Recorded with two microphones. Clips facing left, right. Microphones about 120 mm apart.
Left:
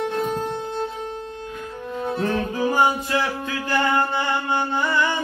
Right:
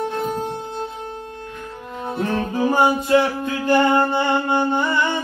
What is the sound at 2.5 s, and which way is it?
Mantra, 25° right (ahead or behind).